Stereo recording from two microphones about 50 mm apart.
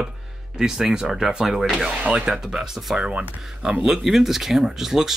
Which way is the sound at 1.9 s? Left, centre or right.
Right.